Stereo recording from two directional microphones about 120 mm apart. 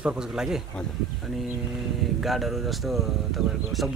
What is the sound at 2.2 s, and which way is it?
Speech, centre (ahead or behind).